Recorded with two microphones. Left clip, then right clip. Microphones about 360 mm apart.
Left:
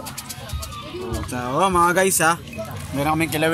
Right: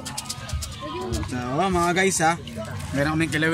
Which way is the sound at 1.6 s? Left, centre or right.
Centre.